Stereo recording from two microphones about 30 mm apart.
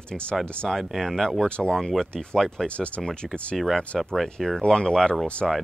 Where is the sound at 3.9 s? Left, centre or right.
Centre.